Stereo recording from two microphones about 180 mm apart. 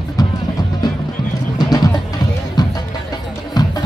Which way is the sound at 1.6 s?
20° left (ahead or behind).